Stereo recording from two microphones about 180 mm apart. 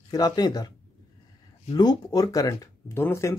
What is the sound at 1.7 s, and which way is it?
Speech, 20° left (ahead or behind).